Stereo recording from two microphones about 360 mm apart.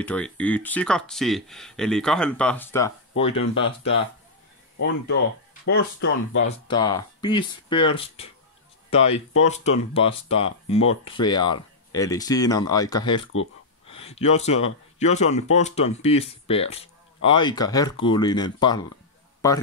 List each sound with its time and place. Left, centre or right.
0.0 s speech: centre
6.0 s speech: left
6.7 s speech: centre